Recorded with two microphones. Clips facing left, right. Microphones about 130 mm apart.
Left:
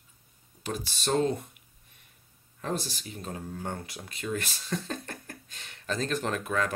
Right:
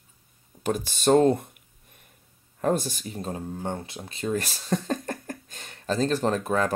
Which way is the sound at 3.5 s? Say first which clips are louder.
Right 4 dB; 25° right (ahead or behind).